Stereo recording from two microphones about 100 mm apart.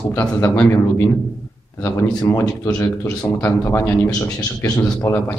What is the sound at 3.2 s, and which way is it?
Speech, 30° left (ahead or behind).